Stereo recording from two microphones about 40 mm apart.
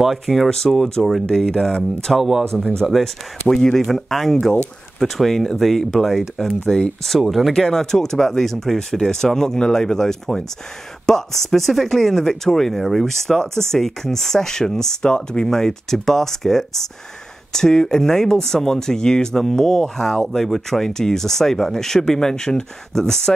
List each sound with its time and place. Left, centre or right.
0.0 s speech: centre
0.5 s speech: centre
2.1 s speech: centre
2.9 s speech: centre
6.6 s speech: centre
7.1 s speech: centre
7.5 s speech: centre